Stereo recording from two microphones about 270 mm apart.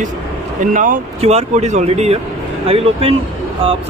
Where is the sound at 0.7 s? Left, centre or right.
Right.